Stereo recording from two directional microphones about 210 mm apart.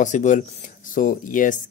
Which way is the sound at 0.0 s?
35° left (ahead or behind).